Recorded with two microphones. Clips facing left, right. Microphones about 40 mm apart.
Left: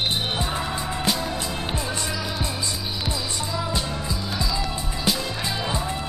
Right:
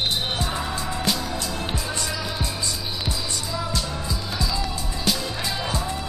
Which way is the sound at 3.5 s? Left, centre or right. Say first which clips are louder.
Left 1 dB; centre.